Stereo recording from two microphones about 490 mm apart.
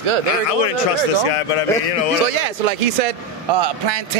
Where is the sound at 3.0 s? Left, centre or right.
Right.